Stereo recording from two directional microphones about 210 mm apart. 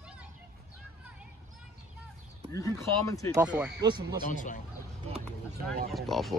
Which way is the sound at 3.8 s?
20° right (ahead or behind).